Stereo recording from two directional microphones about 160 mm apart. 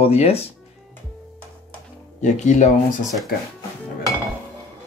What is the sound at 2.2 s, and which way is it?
Speech, 50° left (ahead or behind).